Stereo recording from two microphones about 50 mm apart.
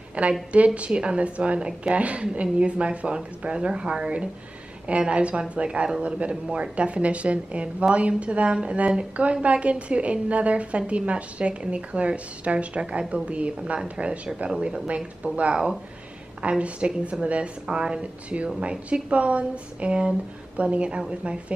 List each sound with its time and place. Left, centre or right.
0.3 s a woman's voice: right